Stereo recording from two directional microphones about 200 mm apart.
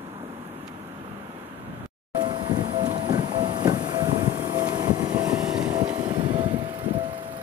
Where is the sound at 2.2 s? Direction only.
20° right (ahead or behind).